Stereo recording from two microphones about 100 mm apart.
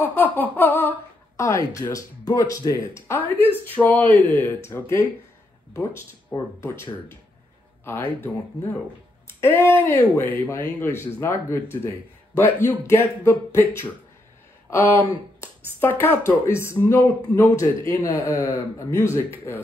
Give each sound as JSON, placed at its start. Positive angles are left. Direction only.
{"t": 0.0, "sound": "a sound", "side_deg": 20}
{"t": 2.9, "sound": "speech", "side_deg": 25}
{"t": 5.7, "sound": "speech", "side_deg": 25}